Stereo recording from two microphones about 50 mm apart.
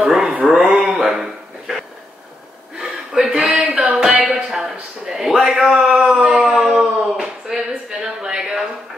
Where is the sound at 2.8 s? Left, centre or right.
Centre.